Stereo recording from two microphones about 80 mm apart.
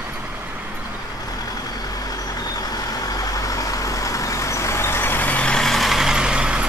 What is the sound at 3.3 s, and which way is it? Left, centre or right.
Vehicle, left.